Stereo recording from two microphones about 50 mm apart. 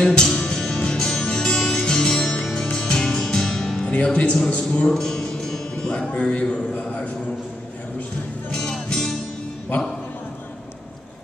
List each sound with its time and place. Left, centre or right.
0.0 s music: centre
3.8 s speech: left
4.5 s music: left
5.9 s speech: left
8.5 s music: centre